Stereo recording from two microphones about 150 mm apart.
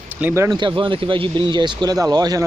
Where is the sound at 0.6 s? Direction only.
30° right (ahead or behind).